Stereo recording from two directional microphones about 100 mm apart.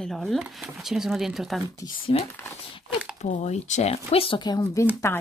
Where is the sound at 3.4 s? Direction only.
90° left; by 4.4 s 75° left (ahead or behind).